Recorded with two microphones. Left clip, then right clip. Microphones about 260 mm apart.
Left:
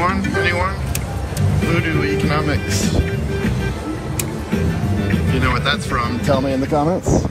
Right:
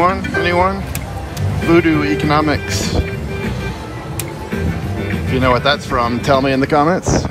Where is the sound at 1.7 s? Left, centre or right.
Centre.